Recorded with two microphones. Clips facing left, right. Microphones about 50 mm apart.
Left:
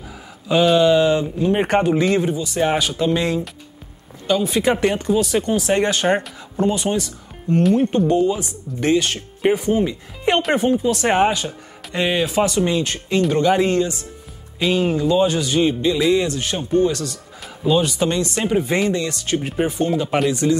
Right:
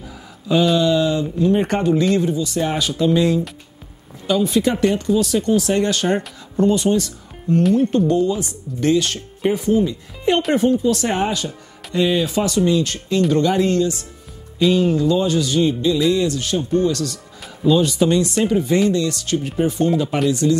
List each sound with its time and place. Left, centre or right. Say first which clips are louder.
0.5 s speech: left 1 dB; centre
0.7 s a sound: left 3 dB; left
1.4 s speech: right 2 dB; left; by 3.2 s centre
4.5 s speech: right 1 dB; left
6.5 s speech: right 3 dB; centre
7.7 s speech: even; left
13.3 s speech: left 1 dB; centre
18.0 s speech: right 3 dB; centre
18.5 s speech: even; left
19.8 s speech: right 3 dB; centre
20.2 s speech: right 3 dB; left